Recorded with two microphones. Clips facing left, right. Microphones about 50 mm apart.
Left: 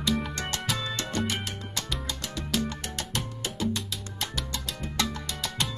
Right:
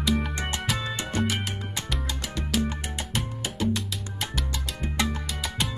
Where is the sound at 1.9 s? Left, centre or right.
Centre.